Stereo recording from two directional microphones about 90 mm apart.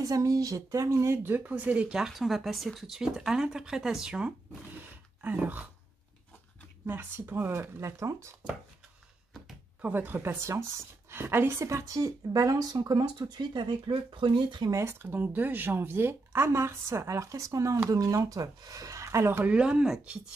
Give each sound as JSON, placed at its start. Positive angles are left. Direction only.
{"t": 0.0, "sound": "speech", "side_deg": -40}
{"t": 5.2, "sound": "speech", "side_deg": -15}
{"t": 6.9, "sound": "speech", "side_deg": -20}
{"t": 9.8, "sound": "a woman's voice", "side_deg": -20}
{"t": 14.7, "sound": "a woman's voice", "side_deg": -30}
{"t": 19.5, "sound": "speech", "side_deg": -10}